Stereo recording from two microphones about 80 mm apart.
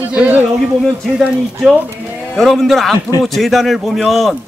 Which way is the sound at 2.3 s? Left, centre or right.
Centre.